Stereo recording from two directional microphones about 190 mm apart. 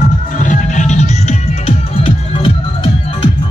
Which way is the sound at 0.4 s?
40° left (ahead or behind).